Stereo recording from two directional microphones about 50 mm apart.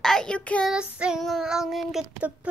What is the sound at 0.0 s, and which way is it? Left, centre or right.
Child singing, centre.